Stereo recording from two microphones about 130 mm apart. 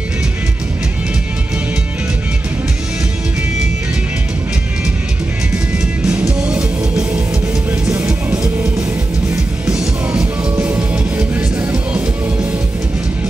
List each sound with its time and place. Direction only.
6.0 s music: 10° right (ahead or behind)
7.8 s music: 25° right (ahead or behind)
9.7 s music: 10° right (ahead or behind)